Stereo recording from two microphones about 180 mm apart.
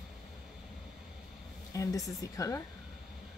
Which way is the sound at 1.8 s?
20° left (ahead or behind).